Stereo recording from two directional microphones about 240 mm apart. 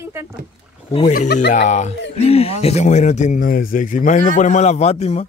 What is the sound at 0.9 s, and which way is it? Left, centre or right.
Speech, left.